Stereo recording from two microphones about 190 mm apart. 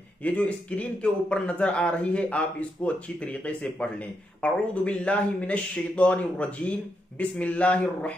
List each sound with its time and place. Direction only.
0.2 s a man's voice: 5° left (ahead or behind)